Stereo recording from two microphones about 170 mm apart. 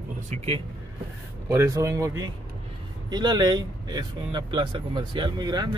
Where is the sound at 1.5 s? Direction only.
20° right (ahead or behind).